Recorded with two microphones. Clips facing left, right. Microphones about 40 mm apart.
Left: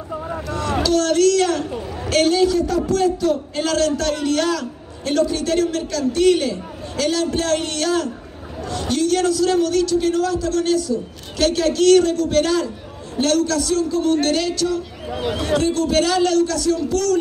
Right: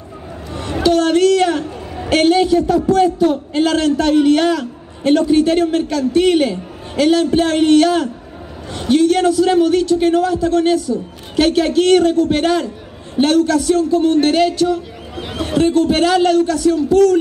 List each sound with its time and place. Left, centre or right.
0.8 s a man's voice: right